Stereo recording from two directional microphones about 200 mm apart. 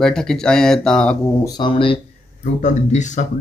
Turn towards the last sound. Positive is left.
turn(degrees=35)  # may be behind; listen again after turning